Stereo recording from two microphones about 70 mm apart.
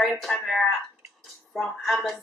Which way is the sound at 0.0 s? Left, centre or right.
Centre.